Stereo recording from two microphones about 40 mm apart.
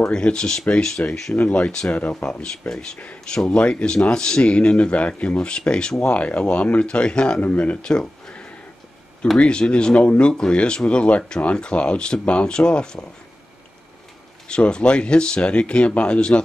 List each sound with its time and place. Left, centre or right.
0.0 s speech: left
1.3 s speech: left
2.6 s speech: left
4.9 s speech: left
6.9 s speech: left
9.4 s speech: left
14.5 s speech: left